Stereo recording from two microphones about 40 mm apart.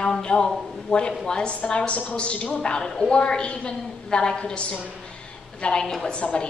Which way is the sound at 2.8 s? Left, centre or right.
Centre.